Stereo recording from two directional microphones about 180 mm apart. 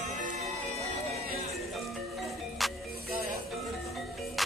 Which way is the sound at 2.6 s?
Centre (ahead or behind).